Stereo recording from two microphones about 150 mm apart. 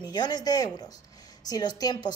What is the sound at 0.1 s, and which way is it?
A woman's voice, 25° left (ahead or behind).